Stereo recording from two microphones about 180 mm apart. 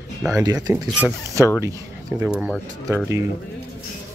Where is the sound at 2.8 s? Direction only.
15° right (ahead or behind).